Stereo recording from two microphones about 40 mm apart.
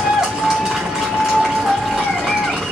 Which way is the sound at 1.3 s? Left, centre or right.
Centre.